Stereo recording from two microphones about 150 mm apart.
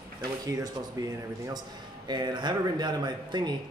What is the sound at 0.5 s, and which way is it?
Speech, 20° right (ahead or behind).